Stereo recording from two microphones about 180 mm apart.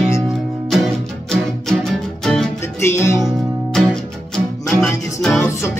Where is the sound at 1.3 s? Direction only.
Centre (ahead or behind).